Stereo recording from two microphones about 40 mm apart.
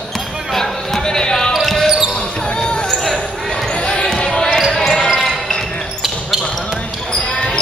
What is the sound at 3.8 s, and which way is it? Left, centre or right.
Basketball bounce, left.